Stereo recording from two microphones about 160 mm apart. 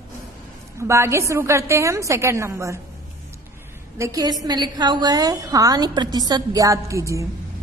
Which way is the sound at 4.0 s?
25° right (ahead or behind).